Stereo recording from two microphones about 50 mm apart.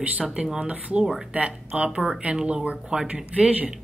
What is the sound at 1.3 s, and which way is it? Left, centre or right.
Speech, right.